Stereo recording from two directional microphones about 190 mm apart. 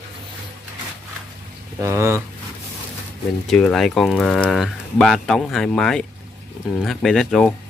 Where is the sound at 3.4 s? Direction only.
Centre (ahead or behind).